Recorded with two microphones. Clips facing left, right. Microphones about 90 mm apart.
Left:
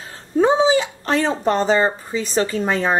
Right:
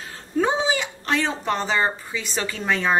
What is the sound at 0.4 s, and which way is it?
Speech, 35° left (ahead or behind).